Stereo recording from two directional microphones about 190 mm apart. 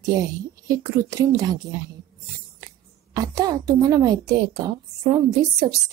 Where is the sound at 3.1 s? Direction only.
20° right (ahead or behind).